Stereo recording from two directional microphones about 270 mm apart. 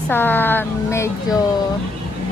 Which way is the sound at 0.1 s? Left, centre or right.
Centre.